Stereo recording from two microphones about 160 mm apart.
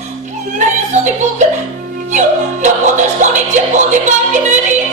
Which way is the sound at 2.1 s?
50° right (ahead or behind).